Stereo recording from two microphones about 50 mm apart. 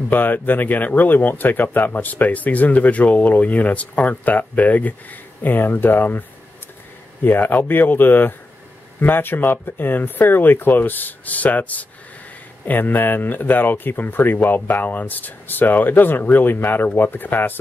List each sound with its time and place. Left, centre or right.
0.1 s speech: left
7.2 s speech: left